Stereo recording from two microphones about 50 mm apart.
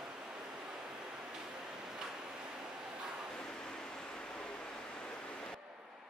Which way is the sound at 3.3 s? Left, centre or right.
Centre.